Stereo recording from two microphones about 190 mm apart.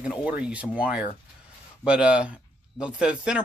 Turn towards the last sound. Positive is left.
turn(degrees=-5)  # may be behind; listen again after turning